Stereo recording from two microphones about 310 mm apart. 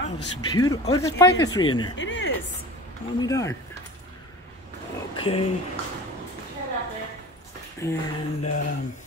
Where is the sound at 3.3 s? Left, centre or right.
Centre.